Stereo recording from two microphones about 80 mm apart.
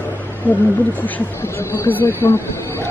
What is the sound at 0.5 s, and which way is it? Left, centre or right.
Speech, left.